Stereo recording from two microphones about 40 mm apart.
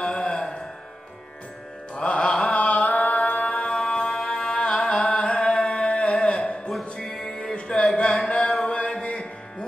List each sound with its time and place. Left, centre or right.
0.0 s music: centre
2.0 s mantra: left
3.5 s music: left
7.5 s a sound: left